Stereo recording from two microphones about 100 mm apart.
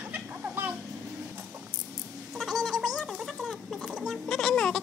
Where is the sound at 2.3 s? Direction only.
5° right (ahead or behind).